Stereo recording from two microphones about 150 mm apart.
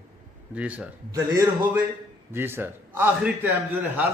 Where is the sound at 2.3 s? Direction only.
15° right (ahead or behind).